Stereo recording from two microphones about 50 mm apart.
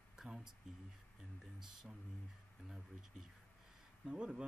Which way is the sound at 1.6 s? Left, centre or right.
Centre.